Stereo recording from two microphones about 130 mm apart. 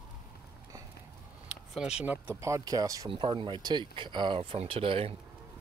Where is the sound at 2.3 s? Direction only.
25° right (ahead or behind).